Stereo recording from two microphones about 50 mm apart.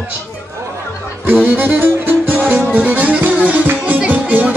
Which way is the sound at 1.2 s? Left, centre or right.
Right.